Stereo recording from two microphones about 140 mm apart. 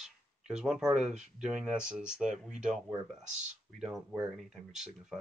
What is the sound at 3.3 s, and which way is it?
Speech, 60° right (ahead or behind).